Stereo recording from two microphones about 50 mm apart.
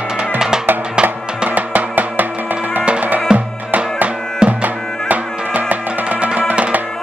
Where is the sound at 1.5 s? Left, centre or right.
Right.